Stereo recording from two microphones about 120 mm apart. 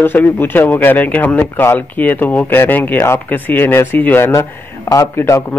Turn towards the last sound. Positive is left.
turn(degrees=20)  # may be behind; listen again after turning